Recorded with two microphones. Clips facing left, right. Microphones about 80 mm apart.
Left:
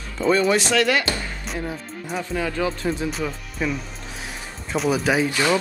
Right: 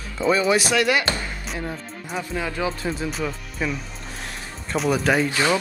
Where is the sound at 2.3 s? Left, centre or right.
Centre.